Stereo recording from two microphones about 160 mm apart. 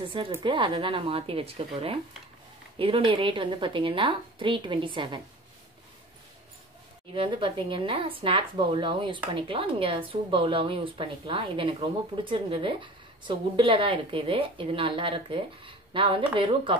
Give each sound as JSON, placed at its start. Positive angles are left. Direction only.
{"t": 0.4, "sound": "a woman's voice", "side_deg": -30}
{"t": 7.2, "sound": "a woman's voice", "side_deg": -30}